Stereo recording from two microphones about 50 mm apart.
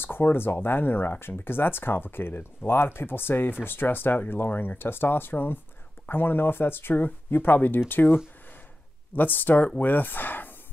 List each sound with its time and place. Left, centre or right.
0.0 s speech: left